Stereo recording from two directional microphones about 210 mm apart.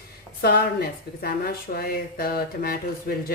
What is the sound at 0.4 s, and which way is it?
Speech, 45° left (ahead or behind).